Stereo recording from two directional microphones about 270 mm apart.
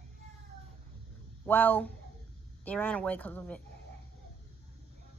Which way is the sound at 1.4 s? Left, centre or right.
Centre.